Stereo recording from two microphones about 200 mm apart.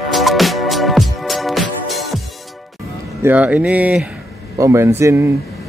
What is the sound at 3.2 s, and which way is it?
Speech, 10° right (ahead or behind).